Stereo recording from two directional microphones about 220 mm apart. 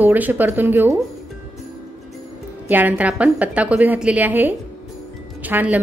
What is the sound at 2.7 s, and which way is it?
A woman's voice, 5° right (ahead or behind).